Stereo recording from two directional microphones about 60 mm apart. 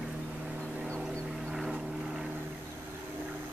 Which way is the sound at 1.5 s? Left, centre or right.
Centre.